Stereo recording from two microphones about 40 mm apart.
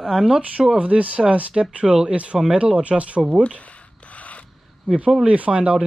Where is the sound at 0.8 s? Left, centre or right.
Right.